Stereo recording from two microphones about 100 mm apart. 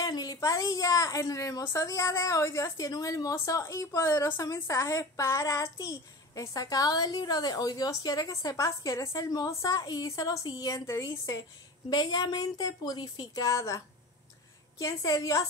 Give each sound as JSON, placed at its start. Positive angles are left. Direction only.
{"t": 0.0, "sound": "a woman's voice", "side_deg": 40}